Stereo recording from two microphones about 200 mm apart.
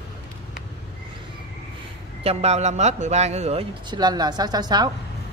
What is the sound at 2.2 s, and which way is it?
Speech, 30° right (ahead or behind).